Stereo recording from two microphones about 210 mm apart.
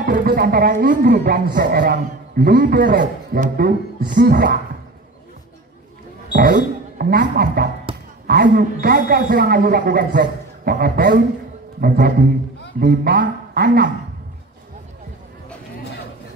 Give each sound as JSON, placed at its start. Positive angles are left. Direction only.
{"t": 0.0, "sound": "speech", "side_deg": -45}
{"t": 6.3, "sound": "speech", "side_deg": -45}